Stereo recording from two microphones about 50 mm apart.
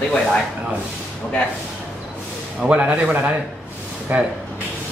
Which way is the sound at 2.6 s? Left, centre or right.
Right.